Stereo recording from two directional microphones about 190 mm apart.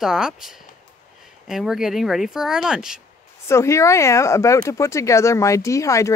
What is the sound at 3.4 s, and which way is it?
Speech, 15° left (ahead or behind).